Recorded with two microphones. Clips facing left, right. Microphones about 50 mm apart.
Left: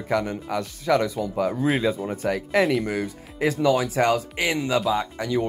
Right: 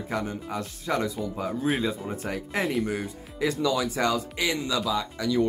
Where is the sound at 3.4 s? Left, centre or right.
Left.